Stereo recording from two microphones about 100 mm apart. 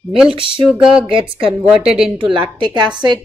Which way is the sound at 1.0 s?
60° right (ahead or behind).